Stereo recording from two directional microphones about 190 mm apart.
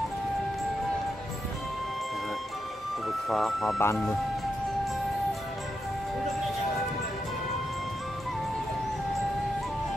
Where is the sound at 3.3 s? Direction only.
Centre (ahead or behind).